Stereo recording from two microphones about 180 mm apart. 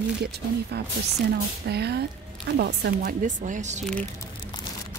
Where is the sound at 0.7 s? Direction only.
65° right (ahead or behind).